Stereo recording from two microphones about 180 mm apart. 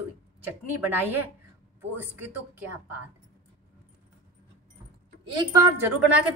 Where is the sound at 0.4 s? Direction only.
10° right (ahead or behind).